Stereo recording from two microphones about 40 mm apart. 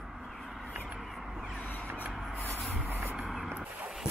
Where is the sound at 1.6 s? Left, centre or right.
Left.